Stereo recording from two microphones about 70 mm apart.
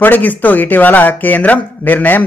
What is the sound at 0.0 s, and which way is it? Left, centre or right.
A man's voice, left.